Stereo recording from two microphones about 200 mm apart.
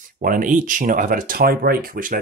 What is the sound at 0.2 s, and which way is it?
Speech, 40° right (ahead or behind).